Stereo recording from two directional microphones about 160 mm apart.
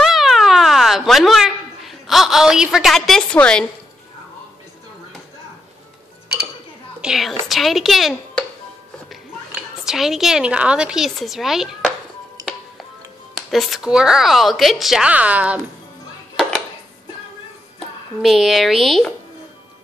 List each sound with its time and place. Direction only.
0.0 s a sound: centre (ahead or behind)
7.0 s a woman's voice: centre (ahead or behind)
9.8 s speech: centre (ahead or behind)
12.4 s music: 25° right (ahead or behind)
13.5 s speech: centre (ahead or behind)
16.3 s music: centre (ahead or behind)
17.7 s speech: centre (ahead or behind)